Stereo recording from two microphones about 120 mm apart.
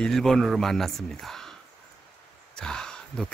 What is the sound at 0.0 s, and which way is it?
A man's voice, 5° left (ahead or behind).